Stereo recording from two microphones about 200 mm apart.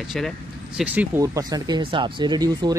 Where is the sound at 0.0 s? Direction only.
Centre (ahead or behind).